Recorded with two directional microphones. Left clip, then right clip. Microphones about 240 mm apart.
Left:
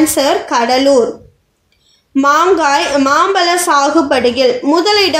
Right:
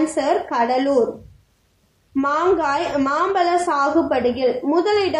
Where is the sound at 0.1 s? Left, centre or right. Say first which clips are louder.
Left 7 dB; left.